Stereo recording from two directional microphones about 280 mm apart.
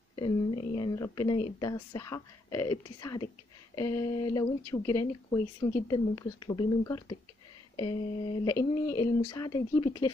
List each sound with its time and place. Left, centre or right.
0.1 s speech: centre
8.5 s speech: centre